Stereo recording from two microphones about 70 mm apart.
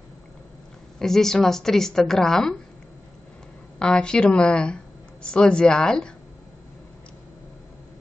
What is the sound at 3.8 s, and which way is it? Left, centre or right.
Speech, centre.